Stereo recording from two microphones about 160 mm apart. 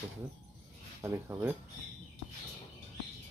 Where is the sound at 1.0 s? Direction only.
15° right (ahead or behind).